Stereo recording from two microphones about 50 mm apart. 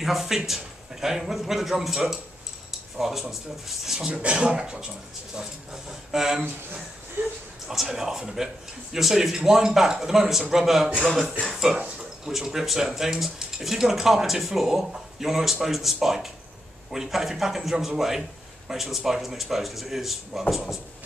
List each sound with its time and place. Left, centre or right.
0.0 s speech: centre
4.1 s speech: right
7.6 s speech: centre
11.7 s speech: right
12.3 s speech: centre